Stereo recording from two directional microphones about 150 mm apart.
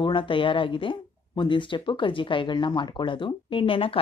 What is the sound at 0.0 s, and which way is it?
Speech, 35° left (ahead or behind).